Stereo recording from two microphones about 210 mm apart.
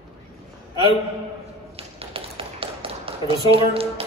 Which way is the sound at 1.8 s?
25° right (ahead or behind).